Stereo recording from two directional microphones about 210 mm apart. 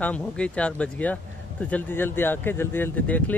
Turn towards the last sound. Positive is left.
turn(degrees=5)  # may be behind; listen again after turning